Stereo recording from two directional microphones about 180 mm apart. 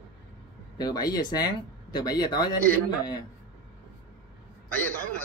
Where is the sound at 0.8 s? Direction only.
20° left (ahead or behind).